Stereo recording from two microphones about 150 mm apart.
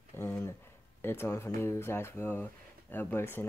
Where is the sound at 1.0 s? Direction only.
15° left (ahead or behind).